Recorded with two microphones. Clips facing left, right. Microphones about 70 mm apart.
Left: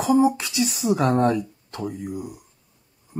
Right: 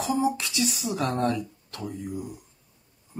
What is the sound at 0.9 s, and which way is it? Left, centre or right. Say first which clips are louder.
Speech: left 6 dB; left.